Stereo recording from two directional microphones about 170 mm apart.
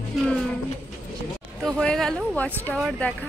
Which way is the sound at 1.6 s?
5° left (ahead or behind).